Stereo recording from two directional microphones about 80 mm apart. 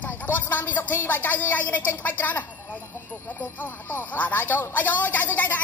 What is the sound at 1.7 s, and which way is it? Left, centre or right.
Speech, left.